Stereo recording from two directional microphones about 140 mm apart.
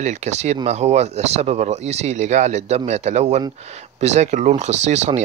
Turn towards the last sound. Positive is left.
turn(degrees=-55)  # may be behind; listen again after turning